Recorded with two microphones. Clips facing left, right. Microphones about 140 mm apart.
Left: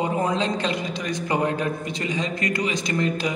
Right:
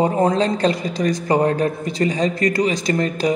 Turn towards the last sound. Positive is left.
turn(degrees=-35)  # may be behind; listen again after turning